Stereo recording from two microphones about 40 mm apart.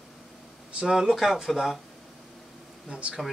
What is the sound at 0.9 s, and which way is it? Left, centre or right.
Speech, centre.